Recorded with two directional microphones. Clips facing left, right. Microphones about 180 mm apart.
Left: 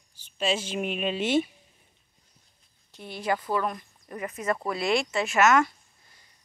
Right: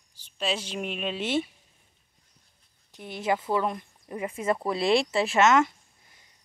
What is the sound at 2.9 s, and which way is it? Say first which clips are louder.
Speech: right 1 dB; 20° right (ahead or behind).